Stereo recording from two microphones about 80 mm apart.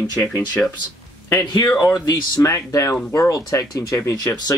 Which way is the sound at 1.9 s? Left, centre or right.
Left.